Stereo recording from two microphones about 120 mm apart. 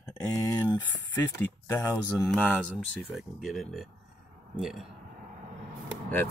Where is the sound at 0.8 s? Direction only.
20° left (ahead or behind).